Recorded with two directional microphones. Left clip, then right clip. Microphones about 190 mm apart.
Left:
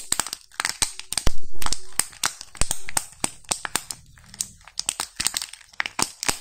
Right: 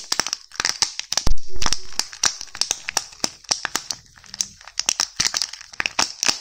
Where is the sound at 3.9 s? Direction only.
20° right (ahead or behind).